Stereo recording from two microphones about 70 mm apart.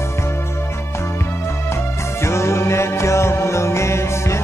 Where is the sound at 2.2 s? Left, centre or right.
Left.